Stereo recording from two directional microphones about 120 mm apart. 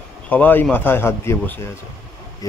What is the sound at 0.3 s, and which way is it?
A man's voice, 15° left (ahead or behind).